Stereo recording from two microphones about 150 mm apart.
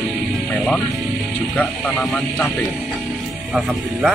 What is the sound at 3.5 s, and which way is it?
Speech, 5° right (ahead or behind).